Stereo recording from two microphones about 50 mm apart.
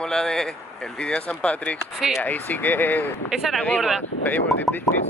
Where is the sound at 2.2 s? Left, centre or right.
Left.